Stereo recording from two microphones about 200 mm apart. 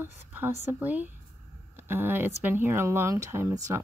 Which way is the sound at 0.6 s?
10° right (ahead or behind).